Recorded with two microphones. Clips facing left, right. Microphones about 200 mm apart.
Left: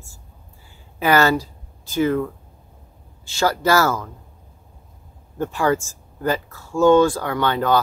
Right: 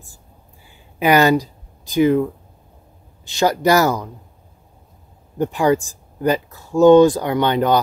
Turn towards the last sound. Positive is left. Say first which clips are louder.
# right 3 dB
turn(degrees=-20)  # may be behind; listen again after turning